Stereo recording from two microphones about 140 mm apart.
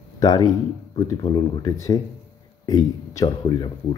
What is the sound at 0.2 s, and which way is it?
Speech, 30° left (ahead or behind).